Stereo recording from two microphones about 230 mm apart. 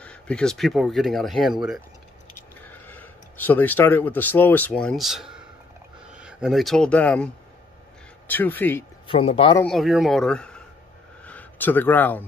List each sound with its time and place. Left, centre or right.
0.0 s speech: centre
8.3 s speech: centre
9.0 s speech: left
9.6 s speech: centre